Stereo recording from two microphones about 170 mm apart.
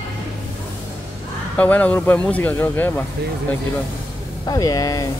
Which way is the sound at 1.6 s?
10° left (ahead or behind).